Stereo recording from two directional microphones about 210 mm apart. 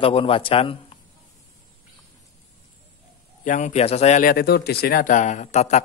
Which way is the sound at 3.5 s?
35° left (ahead or behind).